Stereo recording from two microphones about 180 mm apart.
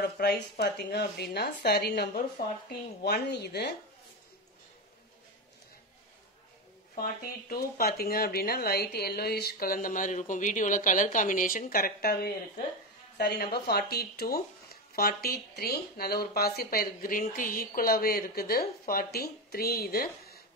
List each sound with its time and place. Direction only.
0.0 s speech: 65° left (ahead or behind)
7.0 s speech: 55° left (ahead or behind)